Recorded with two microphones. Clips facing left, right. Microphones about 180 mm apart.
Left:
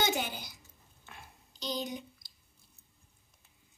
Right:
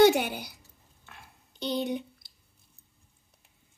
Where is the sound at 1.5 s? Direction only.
60° right (ahead or behind).